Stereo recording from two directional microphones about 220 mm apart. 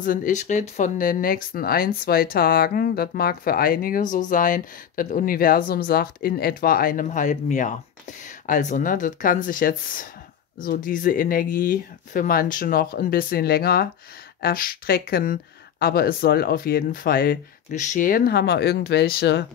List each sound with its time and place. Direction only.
0.0 s speech: 40° left (ahead or behind)